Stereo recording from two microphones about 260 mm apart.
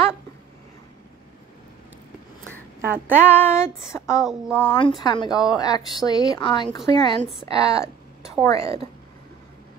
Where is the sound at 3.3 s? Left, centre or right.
Centre.